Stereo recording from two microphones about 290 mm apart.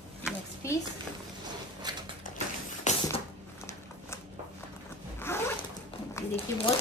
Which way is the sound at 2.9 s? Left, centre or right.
Left.